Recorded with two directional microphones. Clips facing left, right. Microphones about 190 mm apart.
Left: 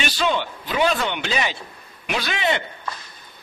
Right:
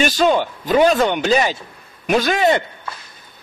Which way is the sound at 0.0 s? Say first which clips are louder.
Right 7 dB; 45° right (ahead or behind).